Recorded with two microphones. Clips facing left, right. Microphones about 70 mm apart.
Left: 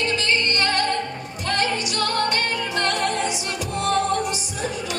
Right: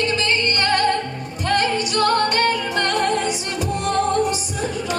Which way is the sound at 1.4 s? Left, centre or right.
Right.